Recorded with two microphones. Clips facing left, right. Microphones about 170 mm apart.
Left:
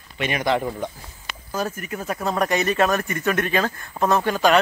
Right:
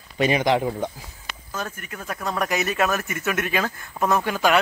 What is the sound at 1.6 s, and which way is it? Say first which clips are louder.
Speech: left 7 dB; 10° left (ahead or behind).